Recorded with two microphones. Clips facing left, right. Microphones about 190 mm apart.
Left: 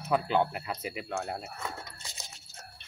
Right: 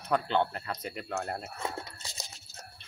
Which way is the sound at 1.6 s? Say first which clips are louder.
Right 3 dB; 30° right (ahead or behind).